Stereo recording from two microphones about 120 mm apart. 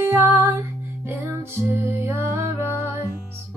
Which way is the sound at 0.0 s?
20° right (ahead or behind).